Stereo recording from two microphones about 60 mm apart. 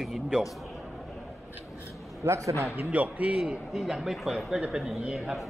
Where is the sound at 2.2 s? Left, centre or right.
Right.